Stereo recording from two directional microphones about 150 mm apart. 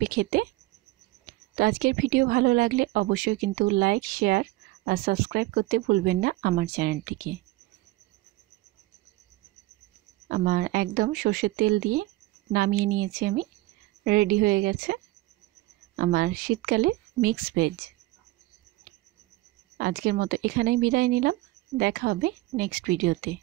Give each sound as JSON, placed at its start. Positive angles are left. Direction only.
{"t": 0.0, "sound": "a woman's voice", "side_deg": -85}
{"t": 10.2, "sound": "a woman's voice", "side_deg": -90}
{"t": 16.0, "sound": "a woman's voice", "side_deg": -80}
{"t": 19.8, "sound": "a woman's voice", "side_deg": -75}